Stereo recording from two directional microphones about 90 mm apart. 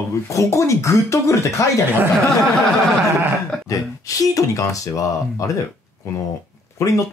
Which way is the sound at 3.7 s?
40° left (ahead or behind).